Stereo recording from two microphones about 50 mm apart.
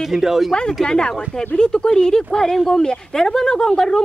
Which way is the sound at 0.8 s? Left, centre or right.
Centre.